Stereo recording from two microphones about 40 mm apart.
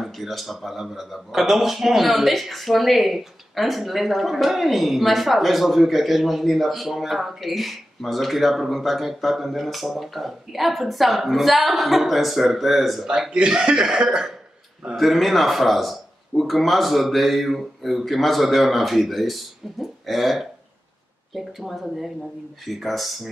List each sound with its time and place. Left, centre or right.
0.0 s speech: centre
13.0 s speech: centre
15.0 s speech: centre